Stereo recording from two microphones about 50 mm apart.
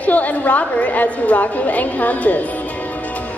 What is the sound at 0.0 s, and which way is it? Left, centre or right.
A woman's voice, left.